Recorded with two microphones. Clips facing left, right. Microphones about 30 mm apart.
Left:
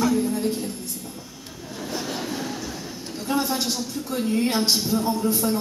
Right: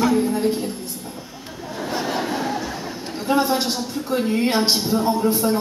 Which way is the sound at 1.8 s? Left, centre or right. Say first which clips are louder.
Right 6 dB; right.